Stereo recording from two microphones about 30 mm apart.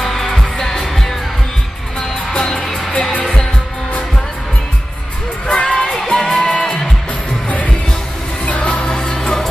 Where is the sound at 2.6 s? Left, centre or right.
Centre.